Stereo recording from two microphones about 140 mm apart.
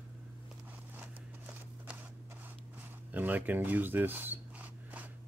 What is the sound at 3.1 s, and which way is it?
Speech, 10° right (ahead or behind).